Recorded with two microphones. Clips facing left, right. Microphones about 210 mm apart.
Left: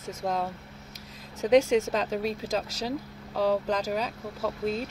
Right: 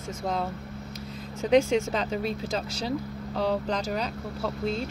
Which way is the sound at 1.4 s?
5° left (ahead or behind).